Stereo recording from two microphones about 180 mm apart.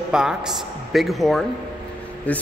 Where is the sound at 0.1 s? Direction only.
5° right (ahead or behind).